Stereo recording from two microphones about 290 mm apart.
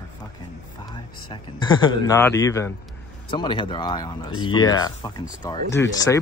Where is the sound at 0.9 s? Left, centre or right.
Centre.